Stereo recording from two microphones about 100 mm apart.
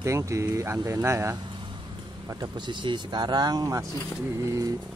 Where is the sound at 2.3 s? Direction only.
45° right (ahead or behind).